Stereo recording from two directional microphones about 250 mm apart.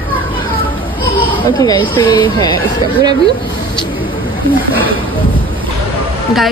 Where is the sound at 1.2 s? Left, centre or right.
Centre.